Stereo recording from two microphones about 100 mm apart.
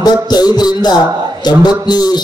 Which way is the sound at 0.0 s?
45° left (ahead or behind).